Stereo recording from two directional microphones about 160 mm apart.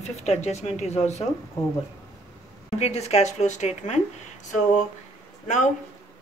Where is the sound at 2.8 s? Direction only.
40° left (ahead or behind).